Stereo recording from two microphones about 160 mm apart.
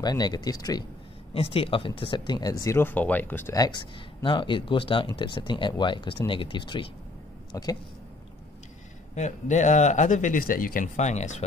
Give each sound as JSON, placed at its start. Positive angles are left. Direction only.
{"t": 0.0, "sound": "speech", "side_deg": 25}
{"t": 1.3, "sound": "speech", "side_deg": 35}
{"t": 3.5, "sound": "speech", "side_deg": 25}
{"t": 9.1, "sound": "speech", "side_deg": 50}